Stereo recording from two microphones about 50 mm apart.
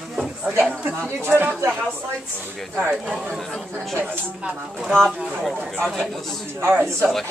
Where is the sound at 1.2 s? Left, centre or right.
Right.